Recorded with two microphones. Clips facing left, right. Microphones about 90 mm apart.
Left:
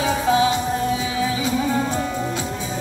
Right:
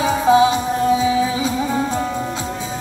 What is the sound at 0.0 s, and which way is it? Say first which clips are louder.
Music: right 5 dB; 20° right (ahead or behind).